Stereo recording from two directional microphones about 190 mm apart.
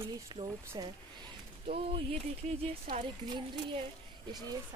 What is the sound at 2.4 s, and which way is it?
Speech, 35° right (ahead or behind).